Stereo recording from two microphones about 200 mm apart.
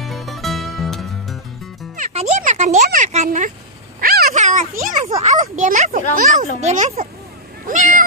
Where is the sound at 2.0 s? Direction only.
35° right (ahead or behind).